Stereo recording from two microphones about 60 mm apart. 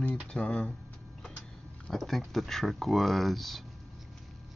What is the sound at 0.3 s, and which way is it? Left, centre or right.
Speech, centre.